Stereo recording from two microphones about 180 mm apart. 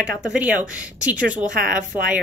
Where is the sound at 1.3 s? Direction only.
45° right (ahead or behind).